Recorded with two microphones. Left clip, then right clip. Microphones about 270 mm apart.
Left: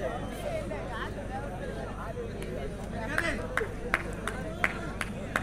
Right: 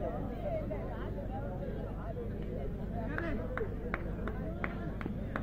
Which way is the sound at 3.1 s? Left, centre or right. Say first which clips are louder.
Left 10 dB; left.